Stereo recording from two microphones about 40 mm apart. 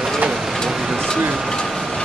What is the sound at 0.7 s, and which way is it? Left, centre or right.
Vehicle, centre.